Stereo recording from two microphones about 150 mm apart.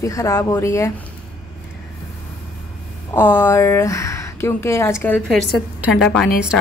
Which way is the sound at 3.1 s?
15° left (ahead or behind).